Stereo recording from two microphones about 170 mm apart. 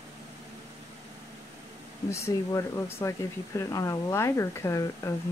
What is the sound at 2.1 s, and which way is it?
Speech, 15° left (ahead or behind).